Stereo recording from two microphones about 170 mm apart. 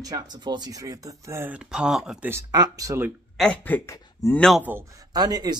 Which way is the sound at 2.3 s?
20° right (ahead or behind).